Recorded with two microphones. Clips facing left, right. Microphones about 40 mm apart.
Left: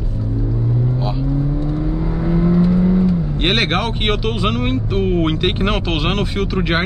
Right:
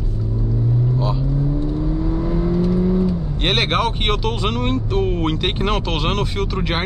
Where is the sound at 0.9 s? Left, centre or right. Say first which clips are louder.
Left 1 dB; centre.